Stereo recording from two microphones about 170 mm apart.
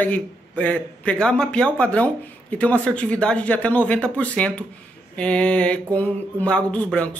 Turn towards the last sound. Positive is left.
turn(degrees=5)  # may be behind; listen again after turning